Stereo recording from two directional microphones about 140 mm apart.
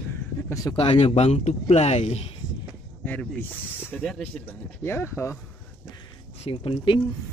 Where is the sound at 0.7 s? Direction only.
45° left (ahead or behind).